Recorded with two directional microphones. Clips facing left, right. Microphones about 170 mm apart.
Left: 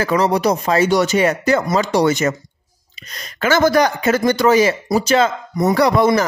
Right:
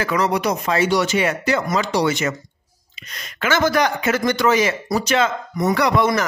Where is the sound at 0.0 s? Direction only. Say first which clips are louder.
Left 4 dB; 35° left (ahead or behind).